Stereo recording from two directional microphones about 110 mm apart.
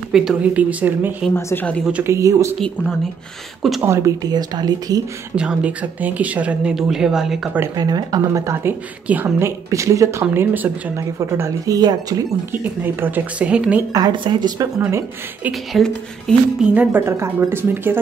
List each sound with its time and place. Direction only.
0.1 s speech: 5° right (ahead or behind)
1.3 s speech: 20° left (ahead or behind)
2.0 s speech: 30° right (ahead or behind)
3.8 s speech: 25° right (ahead or behind)
5.3 s speech: 10° right (ahead or behind)
7.7 s speech: 35° right (ahead or behind)
9.0 s speech: 15° right (ahead or behind)
10.3 s speech: 20° right (ahead or behind); by 12.3 s 35° right (ahead or behind)
12.8 s speech: 15° right (ahead or behind)
13.9 s speech: 40° right (ahead or behind)
14.8 s speech: 20° right (ahead or behind)
15.5 s speech: 5° left (ahead or behind)
16.5 s speech: 10° right (ahead or behind)